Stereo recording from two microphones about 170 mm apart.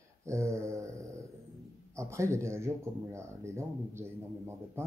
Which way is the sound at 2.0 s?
15° right (ahead or behind).